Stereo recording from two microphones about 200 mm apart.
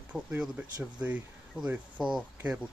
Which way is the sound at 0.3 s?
5° right (ahead or behind).